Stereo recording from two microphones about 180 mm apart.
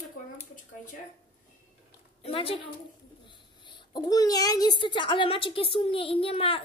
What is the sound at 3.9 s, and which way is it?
A child's voice, 20° left (ahead or behind).